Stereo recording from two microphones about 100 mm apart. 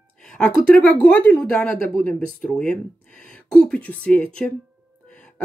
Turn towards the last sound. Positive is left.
turn(degrees=10)  # may be behind; listen again after turning